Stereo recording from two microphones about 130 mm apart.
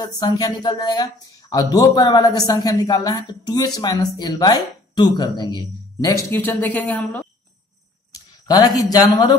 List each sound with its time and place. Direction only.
0.0 s speech: 35° left (ahead or behind); by 7.2 s 10° left (ahead or behind)
8.1 s a sound: 30° left (ahead or behind)
8.9 s speech: 30° left (ahead or behind)